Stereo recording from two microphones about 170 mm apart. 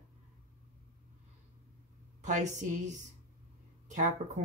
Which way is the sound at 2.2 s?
45° right (ahead or behind).